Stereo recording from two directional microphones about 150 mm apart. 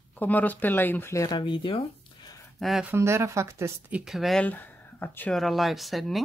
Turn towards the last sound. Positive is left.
turn(degrees=0)  # may be behind; listen again after turning